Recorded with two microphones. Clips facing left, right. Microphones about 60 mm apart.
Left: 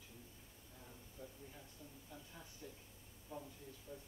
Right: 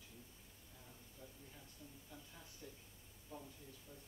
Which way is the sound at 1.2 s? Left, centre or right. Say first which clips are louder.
Left 4 dB; centre.